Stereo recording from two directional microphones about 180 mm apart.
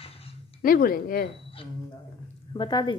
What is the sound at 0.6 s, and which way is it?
Speech, 55° left (ahead or behind).